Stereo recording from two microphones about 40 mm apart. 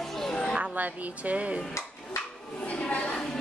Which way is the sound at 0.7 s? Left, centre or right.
Right.